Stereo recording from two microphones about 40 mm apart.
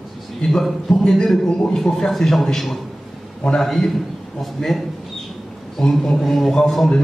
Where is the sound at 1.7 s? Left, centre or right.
Centre.